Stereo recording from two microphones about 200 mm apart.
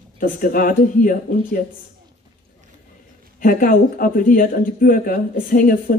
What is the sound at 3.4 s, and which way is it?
Speech, 45° left (ahead or behind).